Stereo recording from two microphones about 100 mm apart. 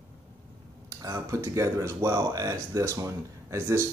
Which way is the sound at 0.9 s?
35° right (ahead or behind).